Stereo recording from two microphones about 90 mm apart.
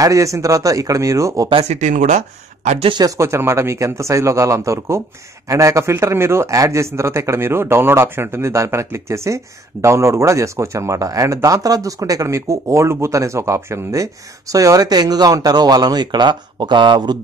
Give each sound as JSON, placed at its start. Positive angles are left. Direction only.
{"t": 0.0, "sound": "speech", "side_deg": -35}
{"t": 3.0, "sound": "speech", "side_deg": -35}